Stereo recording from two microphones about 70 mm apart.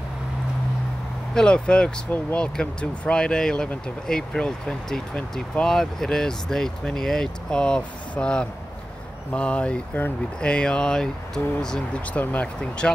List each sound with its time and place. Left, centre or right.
1.3 s speech: centre
12.1 s speech: left